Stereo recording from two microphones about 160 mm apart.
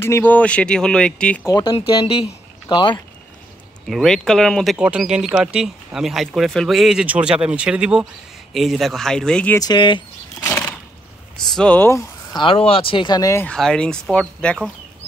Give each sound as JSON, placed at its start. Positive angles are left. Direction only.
{"t": 0.0, "sound": "speech", "side_deg": 15}
{"t": 1.4, "sound": "speech", "side_deg": 25}
{"t": 3.8, "sound": "speech", "side_deg": 5}
{"t": 4.7, "sound": "speech", "side_deg": -5}
{"t": 9.6, "sound": "a sound", "side_deg": 25}
{"t": 10.5, "sound": "a sound", "side_deg": 15}
{"t": 11.5, "sound": "speech", "side_deg": 10}
{"t": 12.4, "sound": "speech", "side_deg": 35}
{"t": 13.5, "sound": "speech", "side_deg": 5}